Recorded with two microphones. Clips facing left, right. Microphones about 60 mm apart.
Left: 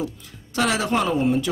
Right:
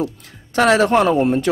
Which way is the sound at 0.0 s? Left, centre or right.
Right.